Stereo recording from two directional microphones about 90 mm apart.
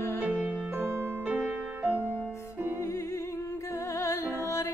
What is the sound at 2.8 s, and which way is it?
Music, 30° left (ahead or behind).